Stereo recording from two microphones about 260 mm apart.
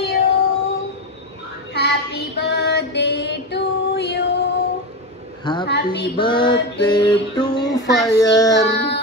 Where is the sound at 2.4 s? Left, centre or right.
Left.